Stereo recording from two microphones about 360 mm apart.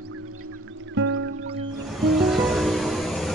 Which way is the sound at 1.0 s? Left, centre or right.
Right.